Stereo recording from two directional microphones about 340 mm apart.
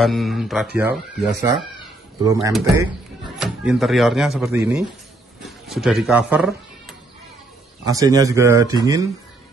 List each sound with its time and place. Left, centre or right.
0.0 s a man's voice: centre
7.8 s speech: centre